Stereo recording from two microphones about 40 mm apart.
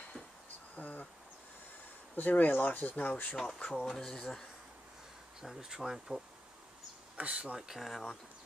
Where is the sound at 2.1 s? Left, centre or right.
Left.